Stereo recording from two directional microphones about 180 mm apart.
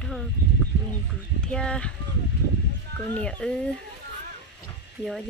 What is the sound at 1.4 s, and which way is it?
Speech, 5° left (ahead or behind).